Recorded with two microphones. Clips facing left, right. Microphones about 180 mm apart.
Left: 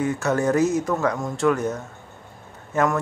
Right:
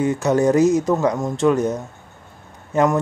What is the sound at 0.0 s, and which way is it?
Speech, 20° right (ahead or behind).